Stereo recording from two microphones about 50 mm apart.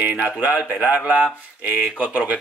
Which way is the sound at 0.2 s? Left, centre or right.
Right.